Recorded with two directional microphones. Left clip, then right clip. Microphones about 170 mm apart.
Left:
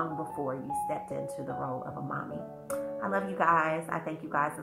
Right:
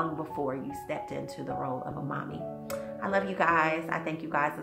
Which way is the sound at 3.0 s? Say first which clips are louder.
Right 3 dB; 20° right (ahead or behind).